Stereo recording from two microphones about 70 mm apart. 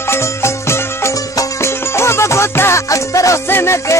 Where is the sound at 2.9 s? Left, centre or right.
Left.